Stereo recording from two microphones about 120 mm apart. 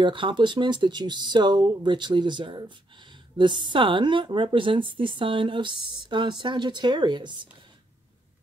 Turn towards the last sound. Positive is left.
turn(degrees=-40)  # may be behind; listen again after turning